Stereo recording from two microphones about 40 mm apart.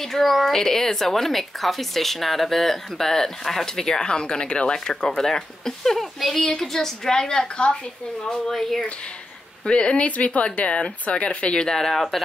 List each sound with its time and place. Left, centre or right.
0.0 s a woman's voice: centre; by 7.7 s left
8.5 s speech: centre
9.7 s speech: left
11.6 s a woman's voice: centre